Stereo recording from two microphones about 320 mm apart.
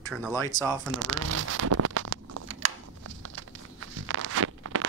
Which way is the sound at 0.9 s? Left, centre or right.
Right.